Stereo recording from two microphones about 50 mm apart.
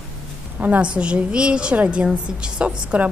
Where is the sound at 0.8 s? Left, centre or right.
Right.